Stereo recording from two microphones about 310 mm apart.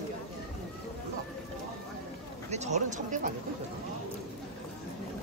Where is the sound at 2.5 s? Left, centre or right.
Right.